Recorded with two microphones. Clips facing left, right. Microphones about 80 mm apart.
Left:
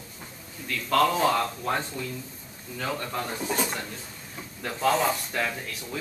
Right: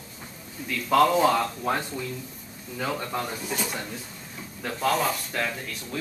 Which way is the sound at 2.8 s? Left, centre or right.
Centre.